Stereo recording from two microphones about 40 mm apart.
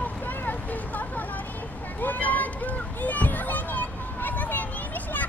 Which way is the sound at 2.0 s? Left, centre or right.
Left.